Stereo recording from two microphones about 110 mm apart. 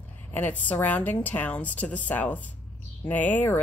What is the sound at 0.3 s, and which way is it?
A woman's voice, 15° left (ahead or behind).